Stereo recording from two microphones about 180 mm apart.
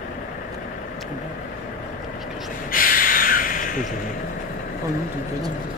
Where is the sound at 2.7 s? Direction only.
50° left (ahead or behind).